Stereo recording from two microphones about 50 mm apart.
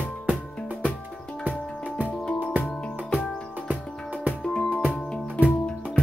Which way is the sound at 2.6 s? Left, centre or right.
Centre.